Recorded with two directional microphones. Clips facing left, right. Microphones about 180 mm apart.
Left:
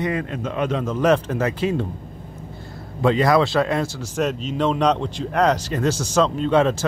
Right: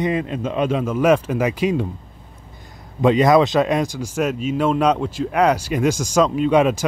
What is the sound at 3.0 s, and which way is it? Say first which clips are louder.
Speech: right 3 dB; 20° right (ahead or behind).